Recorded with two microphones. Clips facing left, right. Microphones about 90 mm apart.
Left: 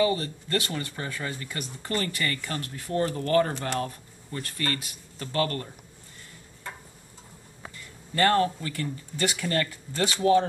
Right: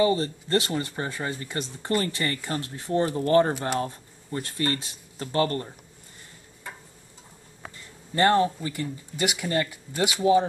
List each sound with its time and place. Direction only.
0.0 s speech: 25° right (ahead or behind)
8.1 s speech: 20° right (ahead or behind)